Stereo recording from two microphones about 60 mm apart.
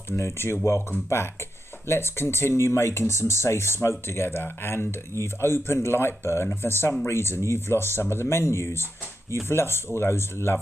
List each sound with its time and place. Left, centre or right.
0.1 s speech: left
1.9 s speech: left